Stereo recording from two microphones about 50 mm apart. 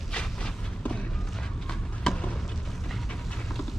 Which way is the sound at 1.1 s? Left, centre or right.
Centre.